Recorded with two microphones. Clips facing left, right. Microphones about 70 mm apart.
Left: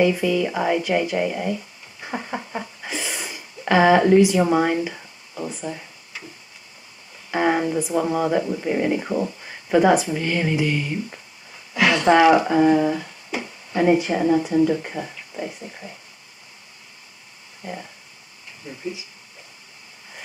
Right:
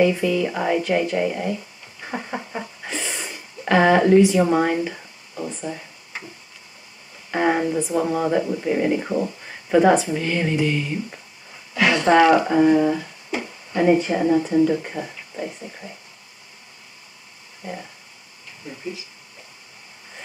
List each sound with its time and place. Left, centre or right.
0.0 s speech: centre
6.1 s a sound: right
7.2 s speech: centre